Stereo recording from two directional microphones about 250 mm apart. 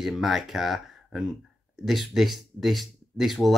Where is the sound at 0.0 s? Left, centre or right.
Centre.